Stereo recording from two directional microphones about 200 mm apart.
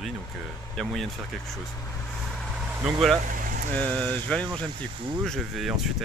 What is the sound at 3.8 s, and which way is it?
Speech, 5° left (ahead or behind).